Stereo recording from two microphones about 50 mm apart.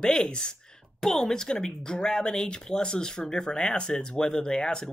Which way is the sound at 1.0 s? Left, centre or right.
Centre.